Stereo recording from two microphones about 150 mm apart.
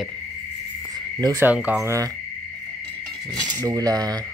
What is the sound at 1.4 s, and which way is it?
Speech, 10° right (ahead or behind).